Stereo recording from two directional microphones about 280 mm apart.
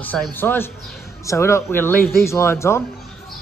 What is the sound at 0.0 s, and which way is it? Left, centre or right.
Speech, centre.